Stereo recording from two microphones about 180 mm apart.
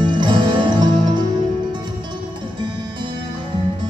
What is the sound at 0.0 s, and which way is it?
Music, 25° right (ahead or behind).